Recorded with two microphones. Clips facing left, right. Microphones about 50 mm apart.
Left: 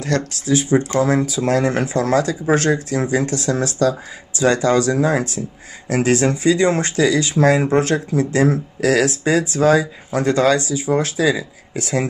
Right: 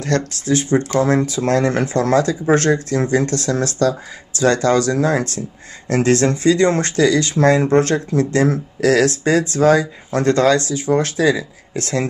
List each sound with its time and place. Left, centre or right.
0.0 s speech: centre